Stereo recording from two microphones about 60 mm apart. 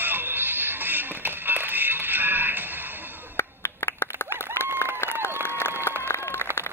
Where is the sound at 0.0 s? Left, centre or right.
Right.